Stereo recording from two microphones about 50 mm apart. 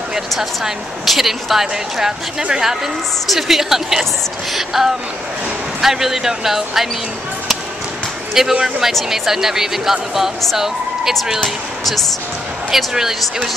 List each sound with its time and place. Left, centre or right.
0.4 s a woman's voice: centre
8.5 s speech: centre
9.1 s a woman's voice: centre
12.7 s a woman's voice: centre